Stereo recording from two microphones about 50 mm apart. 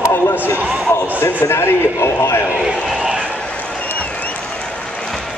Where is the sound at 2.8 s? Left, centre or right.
Centre.